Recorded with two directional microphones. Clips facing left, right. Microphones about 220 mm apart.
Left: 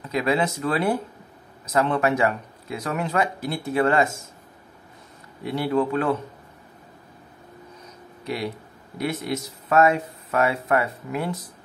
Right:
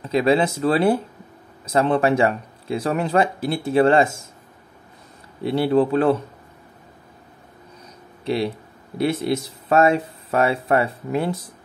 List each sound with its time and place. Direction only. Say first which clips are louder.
0.1 s speech: right 5 dB; 30° right (ahead or behind)
5.4 s speech: right 5 dB; 30° right (ahead or behind)
8.2 s speech: right 6 dB; 30° right (ahead or behind)